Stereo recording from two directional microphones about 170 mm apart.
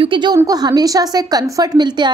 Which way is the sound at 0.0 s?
30° right (ahead or behind).